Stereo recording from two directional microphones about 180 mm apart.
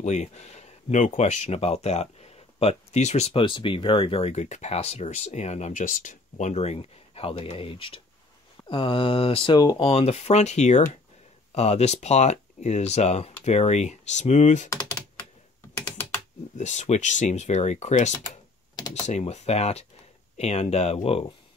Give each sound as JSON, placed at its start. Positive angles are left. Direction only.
{"t": 0.0, "sound": "speech", "side_deg": 40}
{"t": 16.5, "sound": "speech", "side_deg": 40}